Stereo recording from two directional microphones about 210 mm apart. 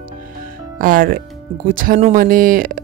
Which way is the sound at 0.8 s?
40° right (ahead or behind).